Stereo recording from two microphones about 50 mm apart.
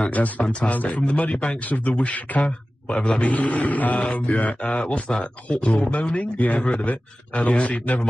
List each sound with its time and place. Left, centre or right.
0.0 s a man's voice: left